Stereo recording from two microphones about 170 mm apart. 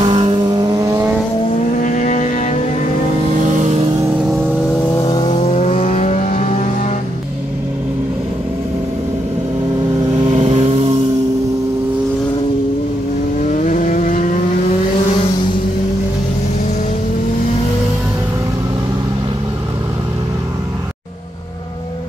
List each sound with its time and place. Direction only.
0.0 s vehicle: 30° right (ahead or behind)
1.8 s music: 50° left (ahead or behind)
3.4 s vehicle: 45° right (ahead or behind)
5.0 s vehicle: 25° left (ahead or behind); by 6.5 s 50° left (ahead or behind)
10.2 s vehicle: 40° right (ahead or behind)
13.5 s vehicle: 45° left (ahead or behind)